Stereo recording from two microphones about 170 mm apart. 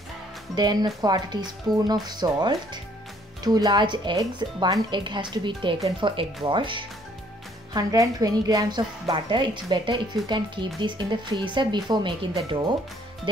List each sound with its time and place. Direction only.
0.6 s a woman's voice: 25° right (ahead or behind)